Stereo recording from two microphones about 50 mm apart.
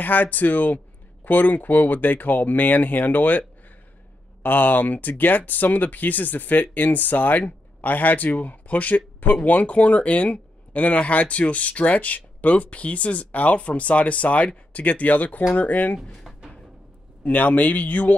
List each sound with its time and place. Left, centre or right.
0.0 s speech: left
16.0 s speech: centre
17.2 s speech: left